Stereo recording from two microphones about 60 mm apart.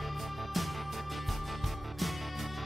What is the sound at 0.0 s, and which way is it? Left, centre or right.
Music, centre.